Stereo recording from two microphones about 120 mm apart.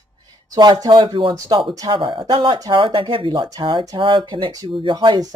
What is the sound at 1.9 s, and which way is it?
Speech, 45° right (ahead or behind).